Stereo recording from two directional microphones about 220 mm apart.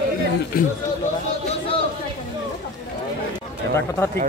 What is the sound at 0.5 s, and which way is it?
Speech, 40° left (ahead or behind).